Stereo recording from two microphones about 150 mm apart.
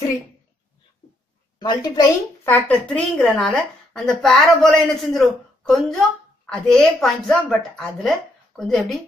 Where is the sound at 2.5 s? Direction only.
10° left (ahead or behind).